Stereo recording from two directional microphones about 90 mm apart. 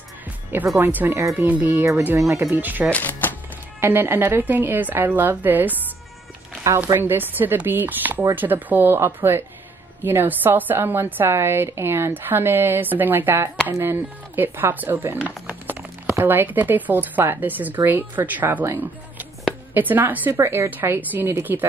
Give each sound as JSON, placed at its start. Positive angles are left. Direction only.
{"t": 0.7, "sound": "a woman's voice", "side_deg": -20}
{"t": 2.1, "sound": "a woman's voice", "side_deg": -35}
{"t": 2.9, "sound": "speech", "side_deg": 20}
{"t": 3.8, "sound": "a woman's voice", "side_deg": -25}
{"t": 6.9, "sound": "a woman's voice", "side_deg": -25}
{"t": 20.3, "sound": "a woman's voice", "side_deg": -30}